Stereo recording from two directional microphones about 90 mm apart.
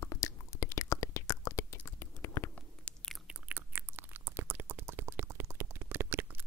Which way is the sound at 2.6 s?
15° left (ahead or behind).